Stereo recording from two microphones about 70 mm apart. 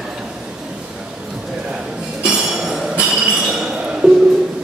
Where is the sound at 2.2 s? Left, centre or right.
Centre.